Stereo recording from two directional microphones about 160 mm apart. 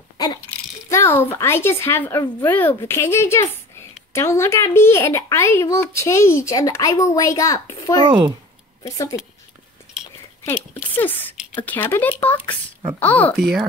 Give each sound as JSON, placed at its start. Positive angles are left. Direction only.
{"t": 0.5, "sound": "a child's voice", "side_deg": 15}
{"t": 8.0, "sound": "a child's voice", "side_deg": -30}
{"t": 8.8, "sound": "a child's voice", "side_deg": 20}
{"t": 10.4, "sound": "speech", "side_deg": 15}
{"t": 13.4, "sound": "speech", "side_deg": -5}